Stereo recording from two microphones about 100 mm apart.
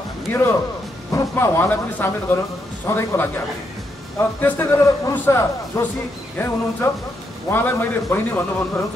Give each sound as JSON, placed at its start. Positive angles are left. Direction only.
{"t": 0.3, "sound": "a man's voice", "side_deg": 25}